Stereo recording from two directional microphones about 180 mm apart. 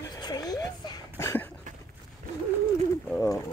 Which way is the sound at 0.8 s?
20° left (ahead or behind).